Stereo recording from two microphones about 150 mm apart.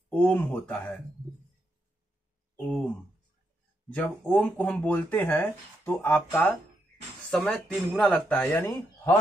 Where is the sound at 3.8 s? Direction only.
10° left (ahead or behind).